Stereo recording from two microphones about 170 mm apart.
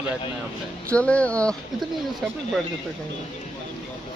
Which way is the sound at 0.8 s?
5° left (ahead or behind).